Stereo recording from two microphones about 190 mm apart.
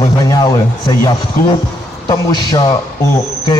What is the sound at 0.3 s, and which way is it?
Speech, 20° left (ahead or behind).